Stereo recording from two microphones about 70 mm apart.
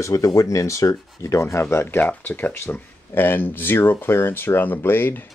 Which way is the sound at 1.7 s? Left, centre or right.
Left.